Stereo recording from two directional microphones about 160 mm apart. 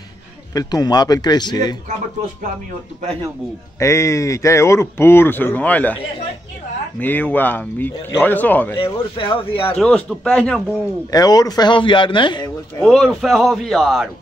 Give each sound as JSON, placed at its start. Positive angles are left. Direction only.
{"t": 0.5, "sound": "speech", "side_deg": 20}
{"t": 3.8, "sound": "speech", "side_deg": 20}
{"t": 7.0, "sound": "speech", "side_deg": 10}
{"t": 8.7, "sound": "speech", "side_deg": 35}
{"t": 9.8, "sound": "speech", "side_deg": 5}
{"t": 11.1, "sound": "speech", "side_deg": 25}
{"t": 12.8, "sound": "speech", "side_deg": 0}